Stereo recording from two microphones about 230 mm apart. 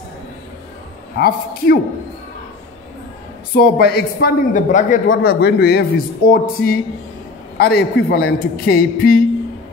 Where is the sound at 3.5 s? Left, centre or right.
Left.